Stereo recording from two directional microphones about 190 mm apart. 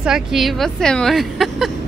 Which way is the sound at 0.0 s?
Centre (ahead or behind).